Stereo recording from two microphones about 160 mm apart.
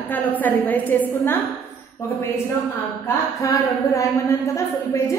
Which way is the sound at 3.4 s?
20° left (ahead or behind).